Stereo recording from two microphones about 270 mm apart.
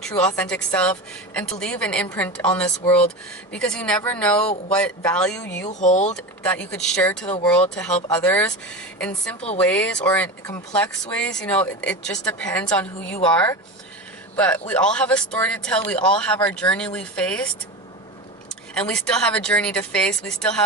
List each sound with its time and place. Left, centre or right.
0.0 s speech: centre
5.8 s speech: left
6.1 s speech: centre
18.8 s speech: centre